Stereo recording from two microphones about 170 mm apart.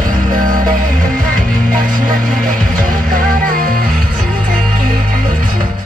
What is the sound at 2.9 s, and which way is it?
Music, 55° right (ahead or behind).